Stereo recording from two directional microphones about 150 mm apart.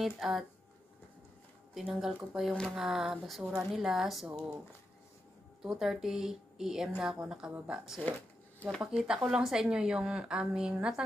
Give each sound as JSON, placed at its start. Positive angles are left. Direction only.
{"t": 0.2, "sound": "a woman's voice", "side_deg": 0}
{"t": 1.7, "sound": "a woman's voice", "side_deg": 0}
{"t": 4.3, "sound": "speech", "side_deg": -25}
{"t": 5.6, "sound": "a woman's voice", "side_deg": -5}